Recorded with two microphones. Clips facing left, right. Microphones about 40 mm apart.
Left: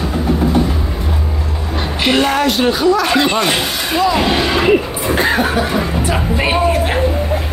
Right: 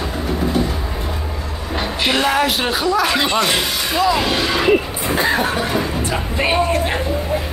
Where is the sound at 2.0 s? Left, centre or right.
Centre.